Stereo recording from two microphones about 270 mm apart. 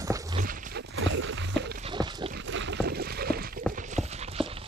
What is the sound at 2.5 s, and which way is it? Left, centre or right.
Boat, right.